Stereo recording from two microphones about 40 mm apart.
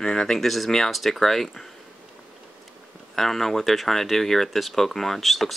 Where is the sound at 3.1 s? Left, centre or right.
Centre.